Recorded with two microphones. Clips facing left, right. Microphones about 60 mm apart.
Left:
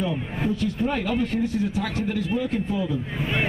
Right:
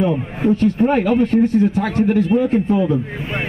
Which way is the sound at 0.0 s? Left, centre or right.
Right.